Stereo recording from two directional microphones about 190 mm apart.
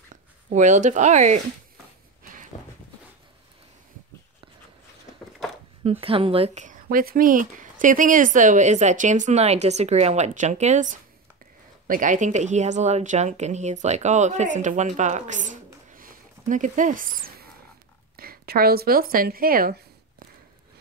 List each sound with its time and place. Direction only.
0.1 s speech: 40° right (ahead or behind)
5.9 s speech: 30° right (ahead or behind); by 19.8 s 50° right (ahead or behind)